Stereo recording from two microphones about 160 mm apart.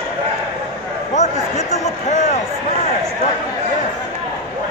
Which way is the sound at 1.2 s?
45° left (ahead or behind).